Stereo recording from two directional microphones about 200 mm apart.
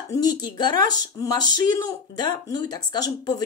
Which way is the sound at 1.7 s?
20° left (ahead or behind).